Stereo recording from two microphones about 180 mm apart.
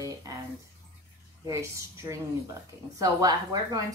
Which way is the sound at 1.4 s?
15° right (ahead or behind).